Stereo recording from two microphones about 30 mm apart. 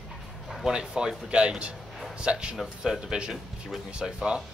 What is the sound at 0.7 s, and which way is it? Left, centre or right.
A man's voice, right.